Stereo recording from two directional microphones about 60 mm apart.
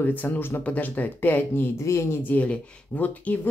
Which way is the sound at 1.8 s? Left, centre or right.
Left.